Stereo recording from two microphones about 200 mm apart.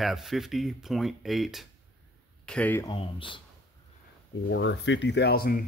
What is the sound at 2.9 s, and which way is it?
Speech, 25° left (ahead or behind).